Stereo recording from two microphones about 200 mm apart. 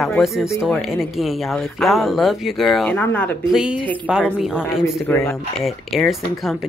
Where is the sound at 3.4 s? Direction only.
5° right (ahead or behind).